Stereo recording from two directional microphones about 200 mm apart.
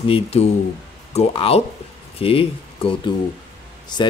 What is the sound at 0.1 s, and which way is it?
Speech, 30° left (ahead or behind).